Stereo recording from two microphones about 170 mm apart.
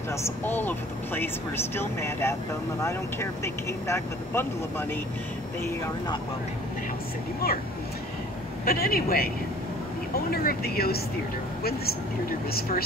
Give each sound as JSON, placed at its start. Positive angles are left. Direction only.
{"t": 0.2, "sound": "speech", "side_deg": 10}
{"t": 7.4, "sound": "speech", "side_deg": 65}
{"t": 8.6, "sound": "speech", "side_deg": 60}
{"t": 10.3, "sound": "speech", "side_deg": 65}